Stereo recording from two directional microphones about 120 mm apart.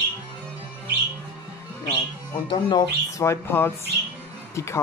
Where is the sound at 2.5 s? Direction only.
35° left (ahead or behind).